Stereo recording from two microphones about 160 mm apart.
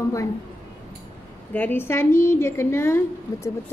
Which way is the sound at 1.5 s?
15° left (ahead or behind).